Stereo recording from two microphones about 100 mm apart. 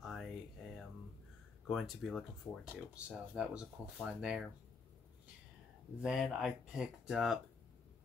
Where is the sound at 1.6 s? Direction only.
5° left (ahead or behind).